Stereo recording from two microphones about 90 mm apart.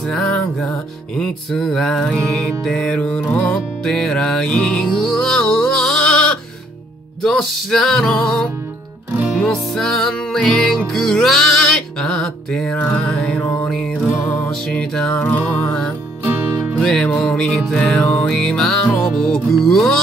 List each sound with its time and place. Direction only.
0.0 s music: 5° left (ahead or behind)
12.7 s music: 20° left (ahead or behind)
13.0 s music: 5° left (ahead or behind)
16.3 s music: 25° right (ahead or behind)
16.8 s music: 10° left (ahead or behind)